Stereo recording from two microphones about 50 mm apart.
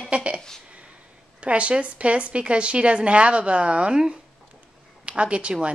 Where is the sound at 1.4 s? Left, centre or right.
Right.